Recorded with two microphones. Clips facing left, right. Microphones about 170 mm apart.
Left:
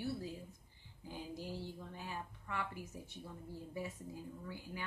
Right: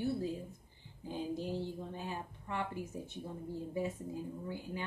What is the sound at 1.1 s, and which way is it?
Speech, 25° right (ahead or behind).